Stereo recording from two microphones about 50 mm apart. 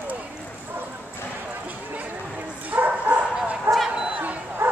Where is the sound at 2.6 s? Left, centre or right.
Right.